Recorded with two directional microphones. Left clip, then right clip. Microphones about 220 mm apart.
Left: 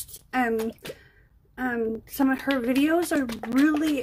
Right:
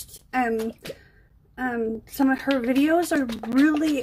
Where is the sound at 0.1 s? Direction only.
10° left (ahead or behind).